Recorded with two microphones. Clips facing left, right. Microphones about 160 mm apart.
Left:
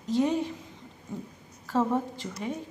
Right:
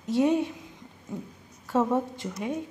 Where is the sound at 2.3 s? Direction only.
15° right (ahead or behind).